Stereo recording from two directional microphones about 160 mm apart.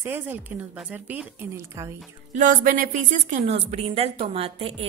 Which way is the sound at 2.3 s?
55° right (ahead or behind).